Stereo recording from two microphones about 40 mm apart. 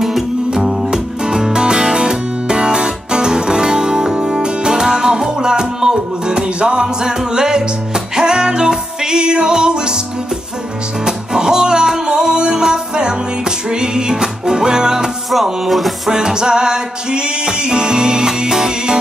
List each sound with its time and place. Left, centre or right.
0.5 s music: centre
11.1 s music: centre
16.1 s music: centre